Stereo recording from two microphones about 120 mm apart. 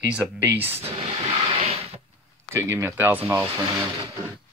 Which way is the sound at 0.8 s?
55° right (ahead or behind).